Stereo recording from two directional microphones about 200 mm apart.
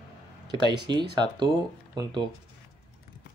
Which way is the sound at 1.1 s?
20° right (ahead or behind).